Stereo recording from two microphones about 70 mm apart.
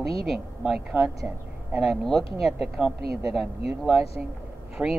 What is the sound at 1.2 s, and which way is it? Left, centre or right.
Speech, right.